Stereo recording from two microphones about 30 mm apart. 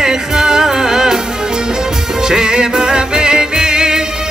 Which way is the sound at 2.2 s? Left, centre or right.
Right.